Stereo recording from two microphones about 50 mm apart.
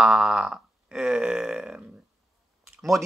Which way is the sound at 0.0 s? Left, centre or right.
Centre.